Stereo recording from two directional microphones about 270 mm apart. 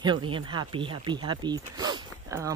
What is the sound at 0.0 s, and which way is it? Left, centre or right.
Speech, centre.